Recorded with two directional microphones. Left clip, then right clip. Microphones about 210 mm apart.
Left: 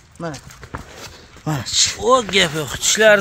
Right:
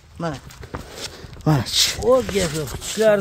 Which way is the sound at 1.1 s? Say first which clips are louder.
Right 4 dB; 35° right (ahead or behind).